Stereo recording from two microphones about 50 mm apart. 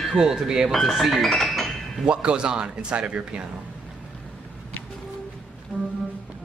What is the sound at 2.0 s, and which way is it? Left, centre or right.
Speech, right.